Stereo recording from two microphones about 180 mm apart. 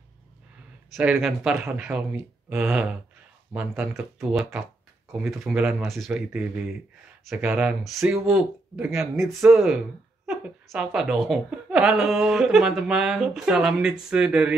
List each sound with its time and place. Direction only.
0.9 s a woman's voice: 15° right (ahead or behind)